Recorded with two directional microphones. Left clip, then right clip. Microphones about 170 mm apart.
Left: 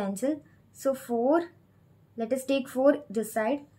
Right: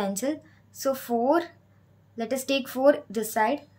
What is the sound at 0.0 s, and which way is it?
A woman's voice, 20° right (ahead or behind).